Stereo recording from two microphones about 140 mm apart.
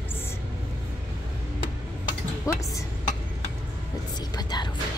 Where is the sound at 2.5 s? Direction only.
25° left (ahead or behind).